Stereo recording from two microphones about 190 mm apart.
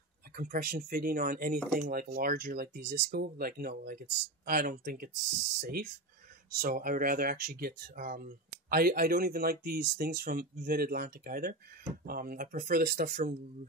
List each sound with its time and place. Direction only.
0.4 s speech: 50° right (ahead or behind)